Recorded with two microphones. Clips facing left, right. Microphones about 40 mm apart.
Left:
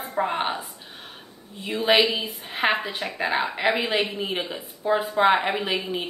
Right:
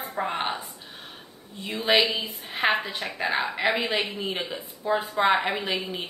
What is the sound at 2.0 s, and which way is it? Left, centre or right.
A woman's voice, centre.